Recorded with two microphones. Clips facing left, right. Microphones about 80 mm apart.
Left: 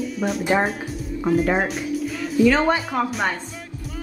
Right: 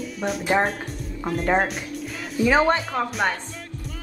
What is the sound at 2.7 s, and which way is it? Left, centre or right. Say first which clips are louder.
Speech: left 1 dB; centre.